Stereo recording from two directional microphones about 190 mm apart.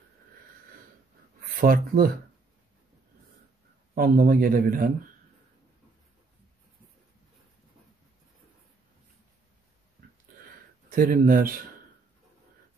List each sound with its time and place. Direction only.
1.6 s speech: 50° right (ahead or behind)
3.9 s speech: 50° right (ahead or behind)
10.9 s speech: 50° right (ahead or behind)